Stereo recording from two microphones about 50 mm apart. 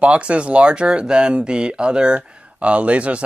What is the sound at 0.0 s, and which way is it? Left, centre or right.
Speech, right.